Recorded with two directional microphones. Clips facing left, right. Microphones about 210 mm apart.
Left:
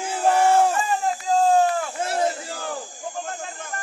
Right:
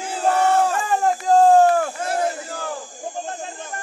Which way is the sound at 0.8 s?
60° right (ahead or behind).